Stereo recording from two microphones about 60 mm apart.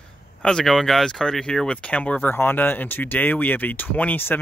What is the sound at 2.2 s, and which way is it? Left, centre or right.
Speech, left.